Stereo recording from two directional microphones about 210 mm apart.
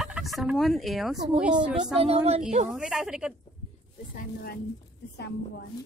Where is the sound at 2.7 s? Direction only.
5° right (ahead or behind).